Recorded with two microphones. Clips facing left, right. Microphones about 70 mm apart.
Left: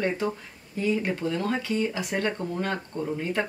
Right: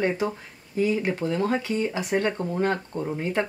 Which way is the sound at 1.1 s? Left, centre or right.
Right.